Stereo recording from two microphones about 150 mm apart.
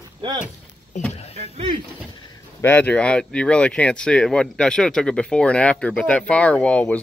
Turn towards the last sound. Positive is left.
turn(degrees=5)  # may be behind; listen again after turning